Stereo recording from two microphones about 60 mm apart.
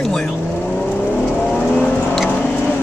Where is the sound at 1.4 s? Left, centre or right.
Centre.